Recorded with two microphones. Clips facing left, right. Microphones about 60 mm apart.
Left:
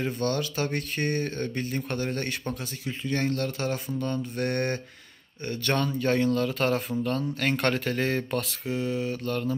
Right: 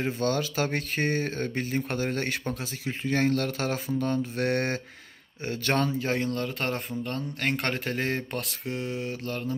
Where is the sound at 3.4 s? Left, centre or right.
Right.